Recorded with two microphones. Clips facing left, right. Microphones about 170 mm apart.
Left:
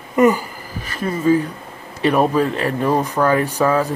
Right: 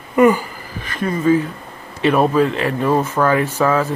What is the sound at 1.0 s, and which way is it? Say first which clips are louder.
Speech: right 1 dB; 30° left (ahead or behind).